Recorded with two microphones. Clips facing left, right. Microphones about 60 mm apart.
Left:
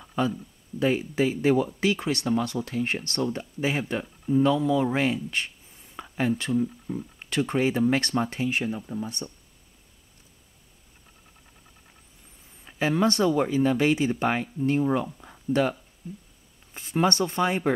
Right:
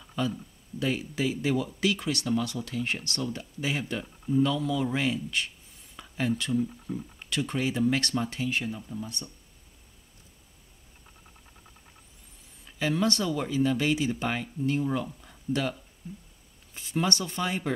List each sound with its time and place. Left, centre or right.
0.0 s a sound: left
0.7 s speech: left
12.6 s speech: left